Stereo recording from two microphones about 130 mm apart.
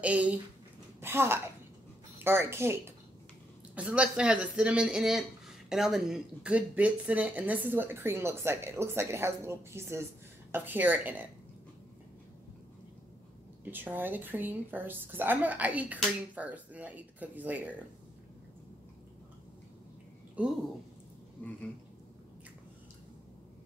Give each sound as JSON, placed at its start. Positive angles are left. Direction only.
{"t": 0.0, "sound": "speech", "side_deg": -10}
{"t": 3.7, "sound": "speech", "side_deg": -10}
{"t": 13.7, "sound": "speech", "side_deg": -15}
{"t": 20.4, "sound": "speech", "side_deg": -10}
{"t": 21.4, "sound": "a sound", "side_deg": 10}